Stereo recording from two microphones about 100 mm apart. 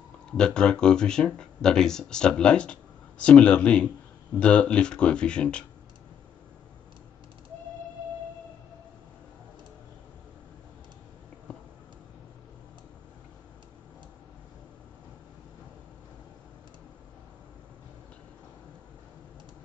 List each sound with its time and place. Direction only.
0.3 s speech: 10° left (ahead or behind)